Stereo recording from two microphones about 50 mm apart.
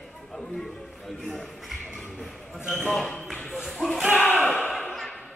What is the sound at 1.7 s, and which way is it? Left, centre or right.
Basketball bounce, centre.